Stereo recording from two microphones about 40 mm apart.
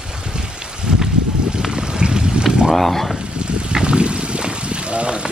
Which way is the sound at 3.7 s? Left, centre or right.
Right.